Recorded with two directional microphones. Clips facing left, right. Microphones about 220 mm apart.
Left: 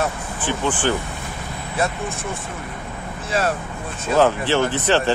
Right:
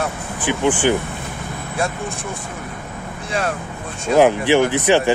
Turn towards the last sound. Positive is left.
turn(degrees=-15)  # may be behind; listen again after turning